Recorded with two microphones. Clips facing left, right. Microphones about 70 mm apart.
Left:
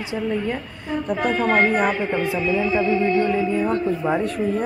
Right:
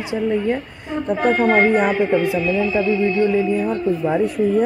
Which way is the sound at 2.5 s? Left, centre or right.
Centre.